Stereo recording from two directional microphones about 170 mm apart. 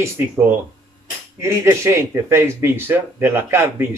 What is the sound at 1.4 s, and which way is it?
Speech, 15° right (ahead or behind).